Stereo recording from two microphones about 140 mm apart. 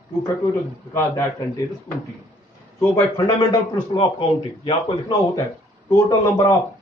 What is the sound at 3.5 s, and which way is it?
Speech, 30° left (ahead or behind).